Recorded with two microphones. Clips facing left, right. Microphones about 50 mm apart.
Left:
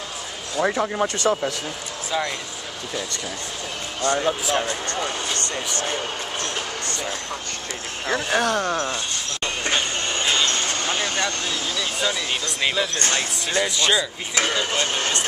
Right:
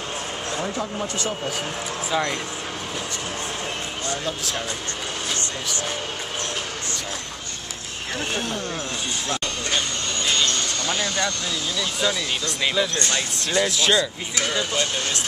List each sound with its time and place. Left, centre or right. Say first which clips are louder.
0.7 s speech: left 5 dB; left
2.1 s speech: right 1 dB; centre
4.1 s speech: left 7 dB; left
8.3 s speech: left 8 dB; left
9.7 s vehicle: left 3 dB; left
12.0 s speech: right 1 dB; centre
12.9 s speech: left 1 dB; left
13.6 s speech: right 1 dB; centre
14.3 s speech: left 3 dB; left